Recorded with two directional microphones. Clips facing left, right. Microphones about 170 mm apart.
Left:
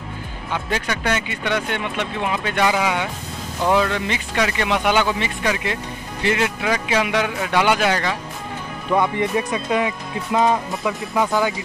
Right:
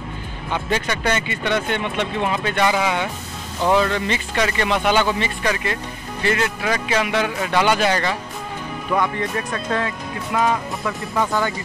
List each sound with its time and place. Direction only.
0.7 s speech: 5° left (ahead or behind)
8.9 s speech: 20° left (ahead or behind)